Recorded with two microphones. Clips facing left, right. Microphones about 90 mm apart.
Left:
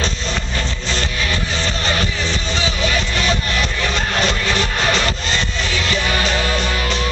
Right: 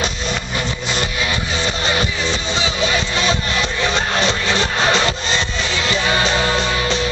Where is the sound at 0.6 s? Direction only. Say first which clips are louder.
Right 1 dB; 15° right (ahead or behind).